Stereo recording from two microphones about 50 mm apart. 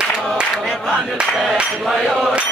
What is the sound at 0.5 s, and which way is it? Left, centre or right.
Speech, centre.